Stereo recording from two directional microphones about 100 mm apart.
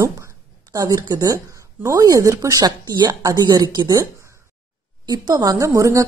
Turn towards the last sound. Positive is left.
turn(degrees=-35)  # may be behind; listen again after turning